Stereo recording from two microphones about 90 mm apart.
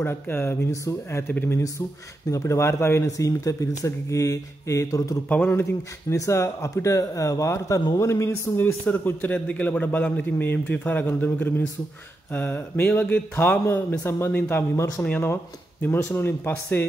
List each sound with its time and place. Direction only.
0.0 s a man's voice: 25° left (ahead or behind)
2.3 s speech: 35° left (ahead or behind)
5.3 s a man's voice: 20° left (ahead or behind)